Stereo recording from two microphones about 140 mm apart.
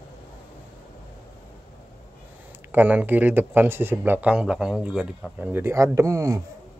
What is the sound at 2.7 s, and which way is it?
Speech, 10° right (ahead or behind).